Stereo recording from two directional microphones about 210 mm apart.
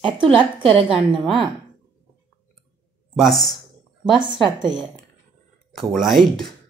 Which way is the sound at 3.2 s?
Centre (ahead or behind).